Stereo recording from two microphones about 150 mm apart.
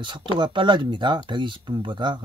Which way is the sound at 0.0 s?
30° right (ahead or behind).